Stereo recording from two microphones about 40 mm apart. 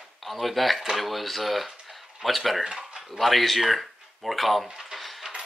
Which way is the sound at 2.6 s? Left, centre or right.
Centre.